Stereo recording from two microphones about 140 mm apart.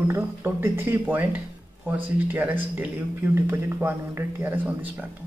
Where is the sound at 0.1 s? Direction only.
15° right (ahead or behind).